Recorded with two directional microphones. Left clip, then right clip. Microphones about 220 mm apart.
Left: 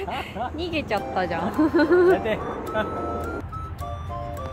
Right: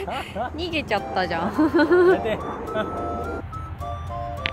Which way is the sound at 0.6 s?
Centre (ahead or behind).